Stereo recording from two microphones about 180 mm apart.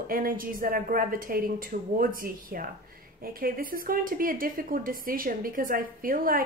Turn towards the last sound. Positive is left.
turn(degrees=-50)  # may be behind; listen again after turning